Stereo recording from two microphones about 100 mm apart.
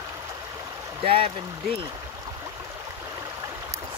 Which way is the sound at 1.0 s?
80° right.